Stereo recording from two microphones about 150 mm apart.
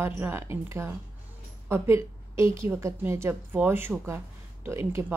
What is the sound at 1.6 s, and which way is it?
A woman's voice, 15° right (ahead or behind).